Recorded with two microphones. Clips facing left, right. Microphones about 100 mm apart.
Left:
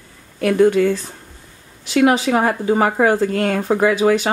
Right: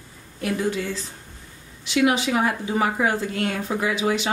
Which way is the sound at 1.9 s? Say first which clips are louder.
Left 6 dB; 40° left (ahead or behind).